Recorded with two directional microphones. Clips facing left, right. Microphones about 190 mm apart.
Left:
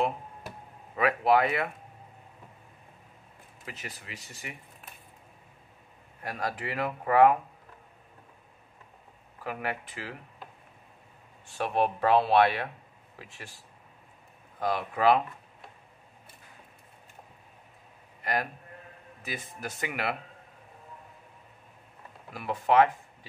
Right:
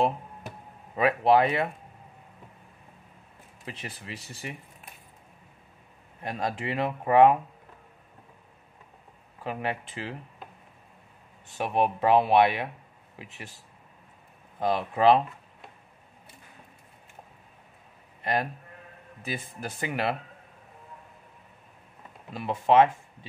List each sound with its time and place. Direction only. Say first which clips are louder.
0.9 s speech: right 3 dB; 25° right (ahead or behind)
3.6 s speech: right 3 dB; 30° right (ahead or behind)
6.2 s speech: right 3 dB; 25° right (ahead or behind)
9.4 s speech: right 2 dB; 25° right (ahead or behind)
11.4 s speech: right 1 dB; 15° right (ahead or behind)
14.6 s speech: right 3 dB; 25° right (ahead or behind)
18.2 s a man's voice: right 3 dB; 25° right (ahead or behind)
22.3 s speech: right 3 dB; 25° right (ahead or behind)